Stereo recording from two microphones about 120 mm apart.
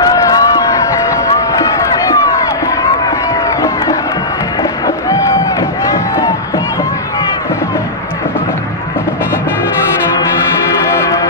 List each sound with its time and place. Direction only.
0.0 s run: 30° left (ahead or behind)
3.4 s run: 25° left (ahead or behind)
4.8 s music: 25° left (ahead or behind)
11.0 s music: 25° left (ahead or behind)